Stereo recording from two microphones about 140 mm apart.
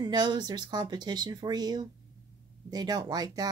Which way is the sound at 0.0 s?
30° right (ahead or behind).